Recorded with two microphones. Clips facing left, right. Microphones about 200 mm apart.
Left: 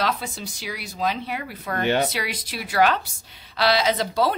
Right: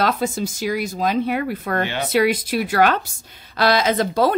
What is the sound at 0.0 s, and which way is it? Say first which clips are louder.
Speech: right 6 dB; 45° right (ahead or behind).